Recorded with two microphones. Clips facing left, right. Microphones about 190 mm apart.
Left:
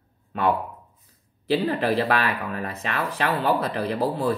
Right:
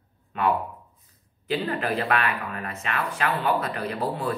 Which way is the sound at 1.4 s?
35° left (ahead or behind).